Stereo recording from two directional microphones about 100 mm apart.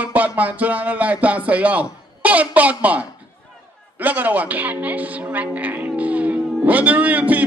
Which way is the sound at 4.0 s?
15° right (ahead or behind).